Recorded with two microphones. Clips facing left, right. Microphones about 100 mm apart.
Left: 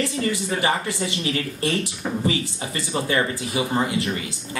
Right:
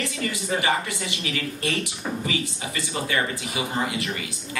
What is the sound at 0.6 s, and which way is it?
A woman's voice, 30° left (ahead or behind).